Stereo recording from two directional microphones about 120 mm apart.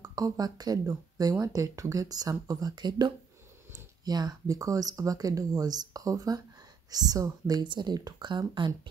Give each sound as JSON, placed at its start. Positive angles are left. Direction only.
{"t": 0.0, "sound": "speech", "side_deg": -30}